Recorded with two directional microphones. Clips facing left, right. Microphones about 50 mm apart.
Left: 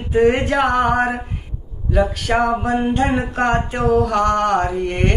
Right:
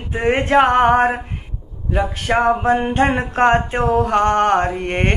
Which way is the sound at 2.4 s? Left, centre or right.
Right.